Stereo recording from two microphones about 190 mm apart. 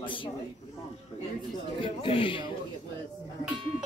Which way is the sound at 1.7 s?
25° left (ahead or behind).